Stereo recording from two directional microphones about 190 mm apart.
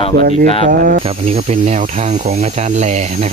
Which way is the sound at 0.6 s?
45° right (ahead or behind).